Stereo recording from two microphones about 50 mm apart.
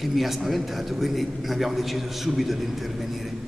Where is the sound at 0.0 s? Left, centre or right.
Centre.